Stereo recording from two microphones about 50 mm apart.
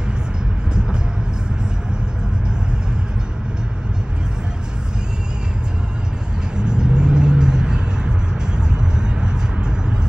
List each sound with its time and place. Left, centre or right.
6.5 s vehicle: centre